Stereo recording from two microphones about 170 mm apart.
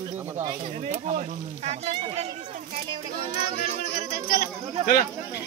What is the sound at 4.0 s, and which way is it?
Speech, 65° left (ahead or behind).